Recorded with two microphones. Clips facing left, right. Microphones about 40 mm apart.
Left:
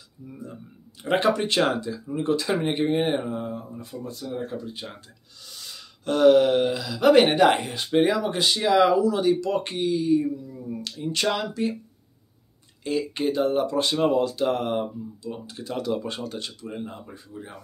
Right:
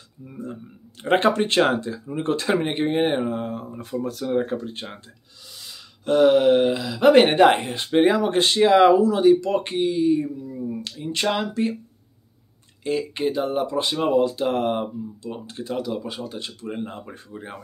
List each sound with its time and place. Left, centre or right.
0.3 s speech: right
1.0 s speech: right
2.5 s speech: centre
3.4 s speech: right
3.8 s speech: right
4.3 s speech: right
5.5 s speech: centre; by 11.7 s right
12.8 s speech: centre
15.2 s speech: right
15.7 s speech: centre
16.6 s speech: right